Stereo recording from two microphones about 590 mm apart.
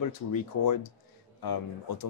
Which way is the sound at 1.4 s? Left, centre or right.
Left.